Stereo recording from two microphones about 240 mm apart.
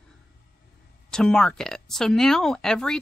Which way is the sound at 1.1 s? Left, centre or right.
Centre.